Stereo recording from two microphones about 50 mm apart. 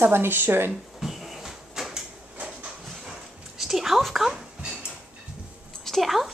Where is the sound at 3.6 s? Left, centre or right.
Centre.